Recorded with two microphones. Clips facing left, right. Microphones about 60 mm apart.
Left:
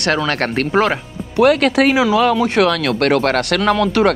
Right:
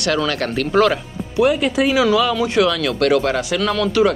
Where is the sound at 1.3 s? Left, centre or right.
Left.